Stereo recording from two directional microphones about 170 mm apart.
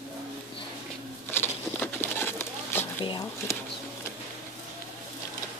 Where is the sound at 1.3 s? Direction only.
10° left (ahead or behind).